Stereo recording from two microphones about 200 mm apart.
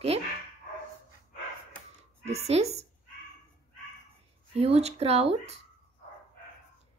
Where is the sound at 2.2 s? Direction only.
30° right (ahead or behind).